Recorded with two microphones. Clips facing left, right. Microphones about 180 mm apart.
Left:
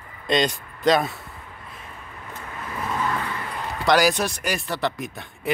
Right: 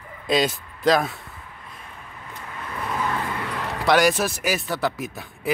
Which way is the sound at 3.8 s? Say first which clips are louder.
Even; centre (ahead or behind).